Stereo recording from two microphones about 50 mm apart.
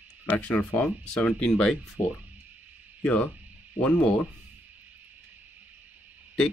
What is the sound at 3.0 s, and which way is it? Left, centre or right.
Speech, left.